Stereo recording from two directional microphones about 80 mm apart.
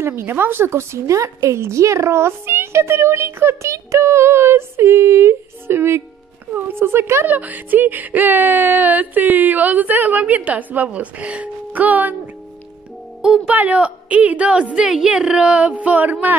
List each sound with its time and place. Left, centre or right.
0.0 s speech: right
13.5 s a woman's voice: centre